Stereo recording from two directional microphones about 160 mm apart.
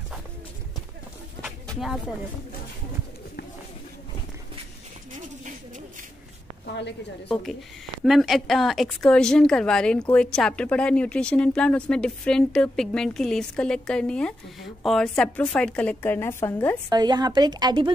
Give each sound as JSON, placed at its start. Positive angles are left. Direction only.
{"t": 1.7, "sound": "speech", "side_deg": 0}
{"t": 5.1, "sound": "a sound", "side_deg": -55}
{"t": 8.0, "sound": "a woman's voice", "side_deg": 0}
{"t": 16.9, "sound": "a woman's voice", "side_deg": -25}